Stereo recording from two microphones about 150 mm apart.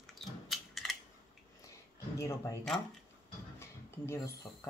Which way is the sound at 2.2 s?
20° left (ahead or behind).